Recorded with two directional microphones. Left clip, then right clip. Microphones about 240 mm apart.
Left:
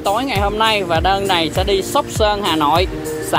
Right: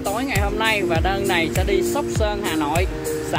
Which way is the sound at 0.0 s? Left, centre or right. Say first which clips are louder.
Left 6 dB; centre.